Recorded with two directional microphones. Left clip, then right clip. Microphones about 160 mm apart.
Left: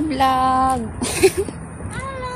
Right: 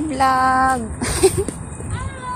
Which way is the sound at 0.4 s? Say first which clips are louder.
Right 1 dB; centre (ahead or behind).